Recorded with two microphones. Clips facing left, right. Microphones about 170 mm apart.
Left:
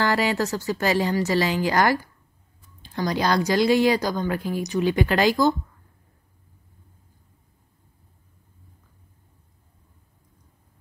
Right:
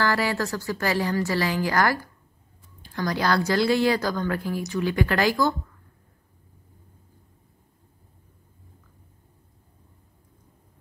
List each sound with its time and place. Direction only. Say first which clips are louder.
0.0 s a woman's voice: left 2 dB; 20° left (ahead or behind)